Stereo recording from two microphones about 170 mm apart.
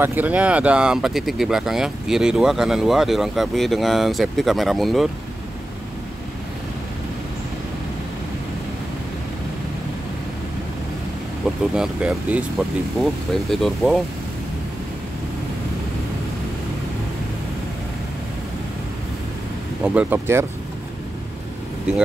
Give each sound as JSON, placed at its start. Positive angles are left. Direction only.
{"t": 0.0, "sound": "speech", "side_deg": -10}
{"t": 11.7, "sound": "speech", "side_deg": -5}
{"t": 19.8, "sound": "speech", "side_deg": -10}